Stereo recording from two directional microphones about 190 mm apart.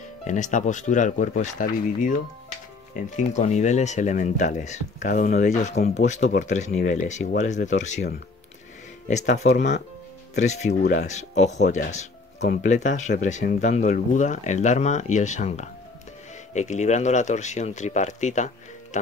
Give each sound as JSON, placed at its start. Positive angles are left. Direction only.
{"t": 0.3, "sound": "speech", "side_deg": 40}
{"t": 3.2, "sound": "speech", "side_deg": 40}
{"t": 9.6, "sound": "speech", "side_deg": 60}
{"t": 10.3, "sound": "speech", "side_deg": 35}